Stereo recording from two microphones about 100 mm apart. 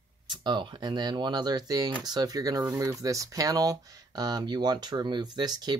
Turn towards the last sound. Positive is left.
turn(degrees=-45)  # may be behind; listen again after turning